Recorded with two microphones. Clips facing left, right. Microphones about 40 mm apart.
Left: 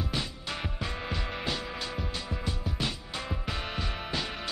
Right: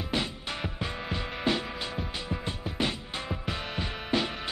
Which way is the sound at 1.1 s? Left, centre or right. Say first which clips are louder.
Right 7 dB; centre.